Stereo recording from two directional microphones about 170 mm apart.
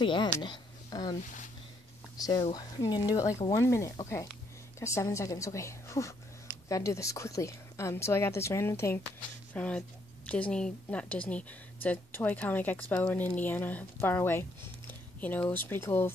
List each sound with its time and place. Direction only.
0.0 s speech: 30° left (ahead or behind)
2.1 s a woman's voice: 20° left (ahead or behind)